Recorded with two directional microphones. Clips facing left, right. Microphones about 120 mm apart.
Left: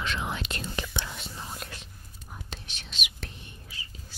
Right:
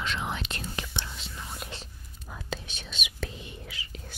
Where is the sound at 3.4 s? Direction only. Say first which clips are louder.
Right 5 dB; 90° right.